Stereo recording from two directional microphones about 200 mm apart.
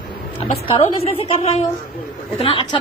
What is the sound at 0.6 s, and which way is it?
A woman's voice, 30° left (ahead or behind).